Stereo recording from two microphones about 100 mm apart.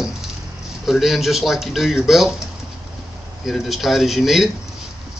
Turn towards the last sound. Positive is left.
turn(degrees=0)  # may be behind; listen again after turning